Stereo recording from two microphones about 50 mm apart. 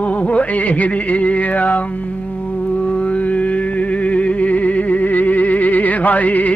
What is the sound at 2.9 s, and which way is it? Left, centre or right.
Music, left.